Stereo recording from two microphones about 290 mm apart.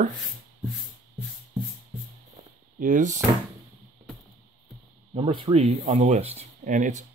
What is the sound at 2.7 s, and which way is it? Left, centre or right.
Speech, right.